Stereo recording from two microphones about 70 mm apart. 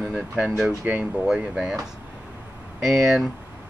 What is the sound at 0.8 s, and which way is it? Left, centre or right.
Speech, right.